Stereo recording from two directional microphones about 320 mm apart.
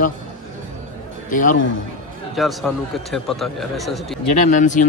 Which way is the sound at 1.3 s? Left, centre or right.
Left.